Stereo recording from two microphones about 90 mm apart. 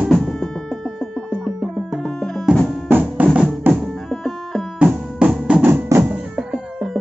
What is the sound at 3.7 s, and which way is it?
Music, 20° right (ahead or behind).